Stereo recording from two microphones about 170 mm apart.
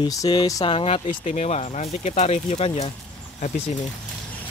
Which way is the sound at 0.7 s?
35° left (ahead or behind).